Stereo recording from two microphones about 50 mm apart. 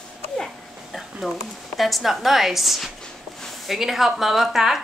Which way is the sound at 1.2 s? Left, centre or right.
Centre.